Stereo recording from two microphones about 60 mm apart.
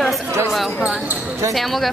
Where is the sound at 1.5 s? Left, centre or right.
Centre.